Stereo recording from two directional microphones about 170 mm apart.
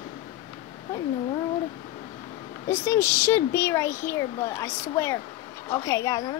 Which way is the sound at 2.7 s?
15° left (ahead or behind).